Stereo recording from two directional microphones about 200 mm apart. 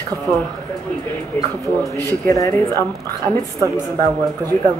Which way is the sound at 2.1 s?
15° left (ahead or behind).